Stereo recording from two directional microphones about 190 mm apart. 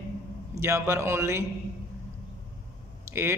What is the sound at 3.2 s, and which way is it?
Speech, 15° right (ahead or behind).